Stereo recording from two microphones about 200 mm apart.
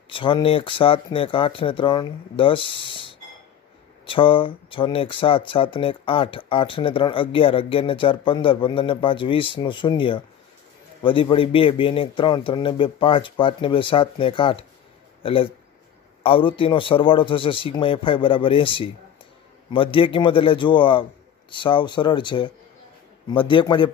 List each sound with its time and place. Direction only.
0.1 s speech: 25° left (ahead or behind)